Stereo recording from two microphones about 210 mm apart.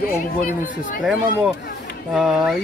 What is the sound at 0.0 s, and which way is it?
Speech, 45° left (ahead or behind).